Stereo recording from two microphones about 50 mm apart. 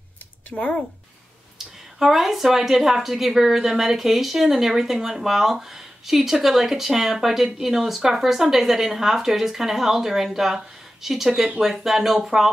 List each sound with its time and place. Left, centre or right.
0.5 s speech: left
2.0 s a woman's voice: centre